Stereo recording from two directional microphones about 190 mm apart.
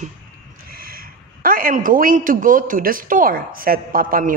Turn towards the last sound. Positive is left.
turn(degrees=-50)  # may be behind; listen again after turning